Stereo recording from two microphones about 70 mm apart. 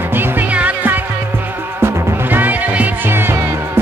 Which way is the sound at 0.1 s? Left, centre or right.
Right.